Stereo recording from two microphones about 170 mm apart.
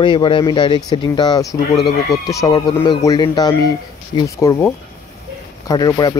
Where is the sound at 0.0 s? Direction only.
30° left (ahead or behind).